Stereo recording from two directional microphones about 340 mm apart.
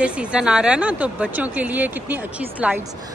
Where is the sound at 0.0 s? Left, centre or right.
Centre.